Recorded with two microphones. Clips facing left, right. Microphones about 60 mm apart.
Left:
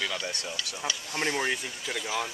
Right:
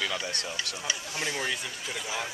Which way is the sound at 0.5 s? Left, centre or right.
Right.